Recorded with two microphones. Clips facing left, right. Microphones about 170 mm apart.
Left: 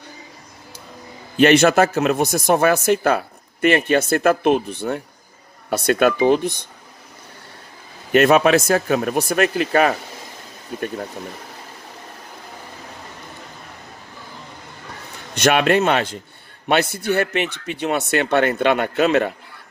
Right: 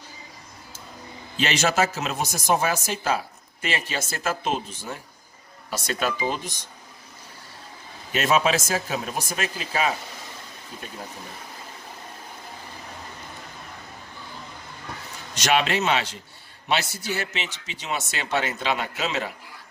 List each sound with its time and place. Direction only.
1.3 s speech: 60° left (ahead or behind)
8.1 s speech: 60° left (ahead or behind)
15.3 s speech: 55° left (ahead or behind)